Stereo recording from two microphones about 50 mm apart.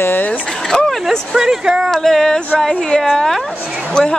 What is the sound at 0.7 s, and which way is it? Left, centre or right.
Music, left.